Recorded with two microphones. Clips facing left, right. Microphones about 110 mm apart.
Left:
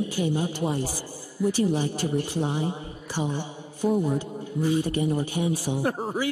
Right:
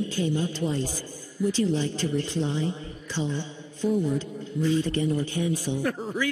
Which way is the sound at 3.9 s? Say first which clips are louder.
Left 1 dB; 50° left (ahead or behind).